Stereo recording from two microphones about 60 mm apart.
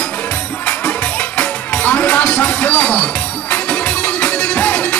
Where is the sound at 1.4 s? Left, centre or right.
Left.